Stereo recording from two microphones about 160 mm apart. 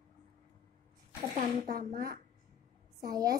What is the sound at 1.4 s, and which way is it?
Speech, 65° right (ahead or behind).